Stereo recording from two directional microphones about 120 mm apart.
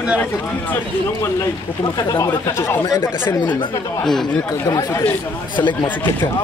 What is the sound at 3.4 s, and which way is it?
Speech, 40° left (ahead or behind).